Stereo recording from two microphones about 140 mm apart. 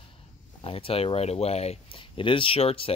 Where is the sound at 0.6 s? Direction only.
45° left (ahead or behind).